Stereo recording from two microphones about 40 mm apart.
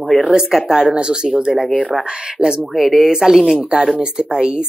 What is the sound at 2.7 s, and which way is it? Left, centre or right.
Speech, centre.